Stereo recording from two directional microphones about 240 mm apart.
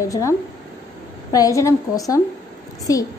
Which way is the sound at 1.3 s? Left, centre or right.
Centre.